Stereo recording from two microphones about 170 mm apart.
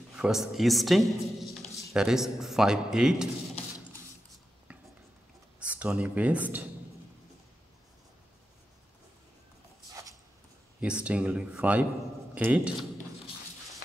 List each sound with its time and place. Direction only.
0.1 s speech: 5° right (ahead or behind)
5.6 s speech: 5° right (ahead or behind)
10.8 s speech: 5° right (ahead or behind)